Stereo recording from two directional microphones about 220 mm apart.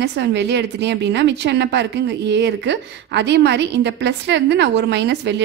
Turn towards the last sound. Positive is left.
turn(degrees=-50)  # may be behind; listen again after turning